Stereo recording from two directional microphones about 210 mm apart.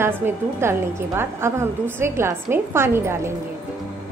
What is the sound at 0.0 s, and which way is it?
A woman's voice, 10° right (ahead or behind).